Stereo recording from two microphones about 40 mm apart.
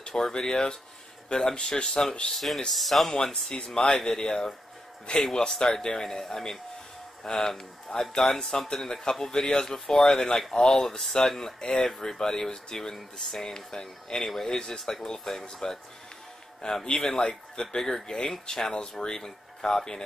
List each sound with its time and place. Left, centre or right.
0.1 s speech: centre
2.3 s speech: centre
3.4 s speech: centre
6.0 s speech: centre
14.6 s speech: centre
15.0 s speech: centre
16.8 s speech: centre